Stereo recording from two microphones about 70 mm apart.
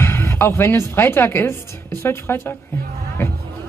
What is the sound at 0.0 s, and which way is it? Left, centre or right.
Speech, left.